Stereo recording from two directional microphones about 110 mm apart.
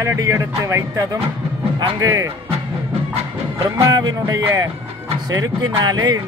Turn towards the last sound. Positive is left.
turn(degrees=-40)  # may be behind; listen again after turning